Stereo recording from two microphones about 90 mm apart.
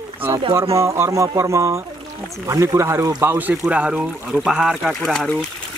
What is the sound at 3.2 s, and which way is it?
Speech, 20° right (ahead or behind).